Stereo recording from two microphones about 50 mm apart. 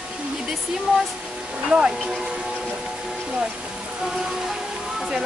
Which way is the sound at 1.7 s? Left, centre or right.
Centre.